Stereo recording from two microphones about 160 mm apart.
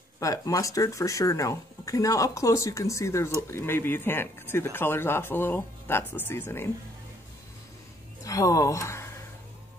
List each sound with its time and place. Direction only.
0.2 s speech: 20° left (ahead or behind)
8.2 s speech: 20° left (ahead or behind)